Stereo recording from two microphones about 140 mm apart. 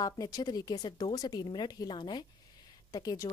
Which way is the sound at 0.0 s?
30° left (ahead or behind).